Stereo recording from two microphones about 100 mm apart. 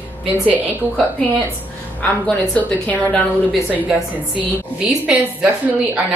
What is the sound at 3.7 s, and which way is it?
A woman's voice, 15° right (ahead or behind).